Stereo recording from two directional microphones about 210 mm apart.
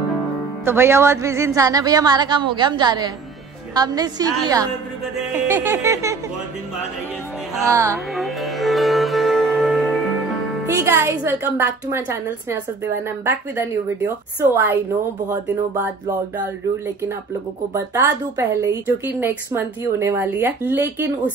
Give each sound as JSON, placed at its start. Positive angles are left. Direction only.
{"t": 0.7, "sound": "a woman's voice", "side_deg": -10}
{"t": 7.6, "sound": "a woman's voice", "side_deg": -15}
{"t": 8.1, "sound": "music", "side_deg": 0}
{"t": 10.7, "sound": "a woman's voice", "side_deg": -10}